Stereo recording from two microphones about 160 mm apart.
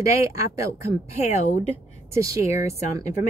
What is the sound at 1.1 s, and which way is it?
Speech, 45° left (ahead or behind).